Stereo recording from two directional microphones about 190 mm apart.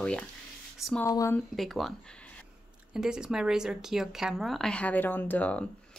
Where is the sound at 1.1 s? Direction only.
15° left (ahead or behind).